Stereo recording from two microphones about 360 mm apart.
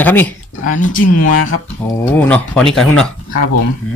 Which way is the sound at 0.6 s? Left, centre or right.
Left.